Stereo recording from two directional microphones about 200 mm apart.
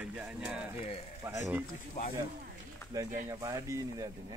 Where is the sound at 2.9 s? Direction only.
15° right (ahead or behind).